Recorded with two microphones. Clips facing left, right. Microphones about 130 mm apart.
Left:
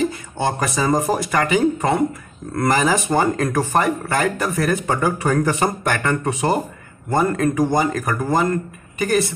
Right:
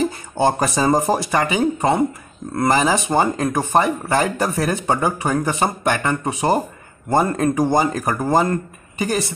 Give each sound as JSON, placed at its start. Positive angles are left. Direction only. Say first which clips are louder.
{"t": 0.0, "sound": "speech", "louder": "right 3 dB", "side_deg": -35}